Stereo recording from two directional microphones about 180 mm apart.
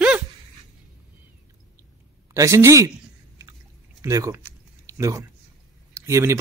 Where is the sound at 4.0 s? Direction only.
15° right (ahead or behind).